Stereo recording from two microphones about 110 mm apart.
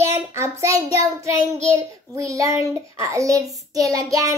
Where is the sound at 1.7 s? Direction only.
30° right (ahead or behind).